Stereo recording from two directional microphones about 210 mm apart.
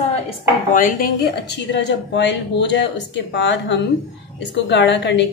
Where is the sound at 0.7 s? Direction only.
40° left (ahead or behind).